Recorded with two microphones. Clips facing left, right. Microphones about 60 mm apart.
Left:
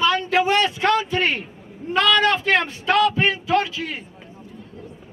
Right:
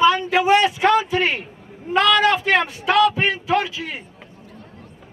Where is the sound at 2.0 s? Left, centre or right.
Centre.